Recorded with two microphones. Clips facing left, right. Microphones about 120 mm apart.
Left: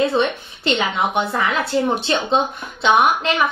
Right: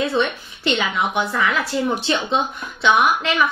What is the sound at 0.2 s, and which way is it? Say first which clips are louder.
A woman's voice: left 1 dB; 30° left (ahead or behind).